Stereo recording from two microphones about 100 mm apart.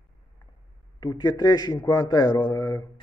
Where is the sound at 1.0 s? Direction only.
40° left (ahead or behind).